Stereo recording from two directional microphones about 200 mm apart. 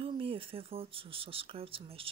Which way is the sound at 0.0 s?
25° right (ahead or behind).